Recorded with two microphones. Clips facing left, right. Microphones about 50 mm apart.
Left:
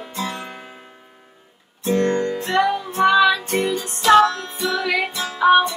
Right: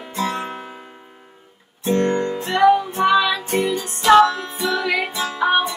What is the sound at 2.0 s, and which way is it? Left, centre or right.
Music, centre.